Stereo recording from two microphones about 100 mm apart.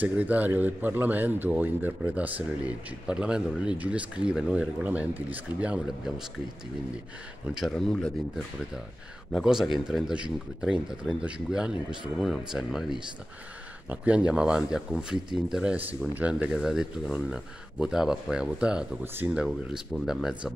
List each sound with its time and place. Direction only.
0.0 s a man's voice: 15° right (ahead or behind)
7.5 s speech: centre (ahead or behind)
9.3 s a man's voice: 5° right (ahead or behind)
13.8 s a man's voice: 10° right (ahead or behind)